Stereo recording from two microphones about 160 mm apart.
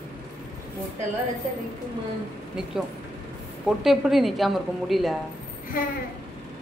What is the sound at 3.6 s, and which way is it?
A woman's voice, centre (ahead or behind).